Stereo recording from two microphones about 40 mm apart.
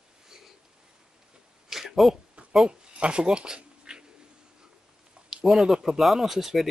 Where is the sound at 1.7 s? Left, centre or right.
Centre.